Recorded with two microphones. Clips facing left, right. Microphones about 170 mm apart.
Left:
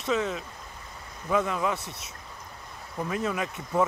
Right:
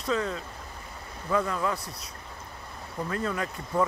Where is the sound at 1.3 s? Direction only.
15° left (ahead or behind).